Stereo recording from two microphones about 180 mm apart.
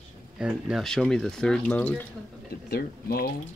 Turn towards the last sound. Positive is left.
turn(degrees=60)  # may be behind; listen again after turning